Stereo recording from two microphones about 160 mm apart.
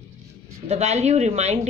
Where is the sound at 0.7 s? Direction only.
45° right (ahead or behind).